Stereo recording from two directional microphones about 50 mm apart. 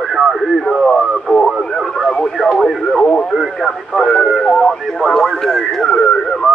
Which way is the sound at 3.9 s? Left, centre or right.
Centre.